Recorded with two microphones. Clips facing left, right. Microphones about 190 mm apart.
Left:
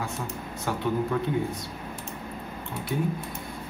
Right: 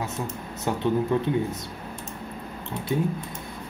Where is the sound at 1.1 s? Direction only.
20° right (ahead or behind).